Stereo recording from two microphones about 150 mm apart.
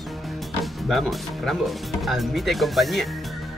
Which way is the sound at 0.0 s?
Centre (ahead or behind).